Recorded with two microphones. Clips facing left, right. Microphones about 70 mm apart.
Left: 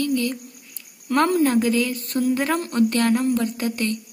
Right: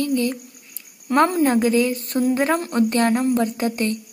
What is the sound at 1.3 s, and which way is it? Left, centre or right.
A woman's voice, right.